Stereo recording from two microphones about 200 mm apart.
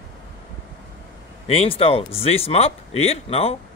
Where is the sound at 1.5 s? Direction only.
30° left (ahead or behind).